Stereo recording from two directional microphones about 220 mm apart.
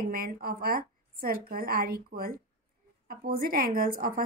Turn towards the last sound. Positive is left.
turn(degrees=-40)  # may be behind; listen again after turning